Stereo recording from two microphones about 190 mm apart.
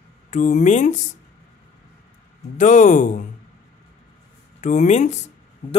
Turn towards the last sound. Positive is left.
turn(degrees=30)  # may be behind; listen again after turning